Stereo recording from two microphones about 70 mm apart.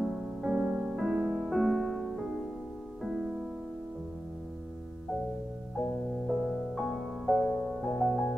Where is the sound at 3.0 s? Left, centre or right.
Centre.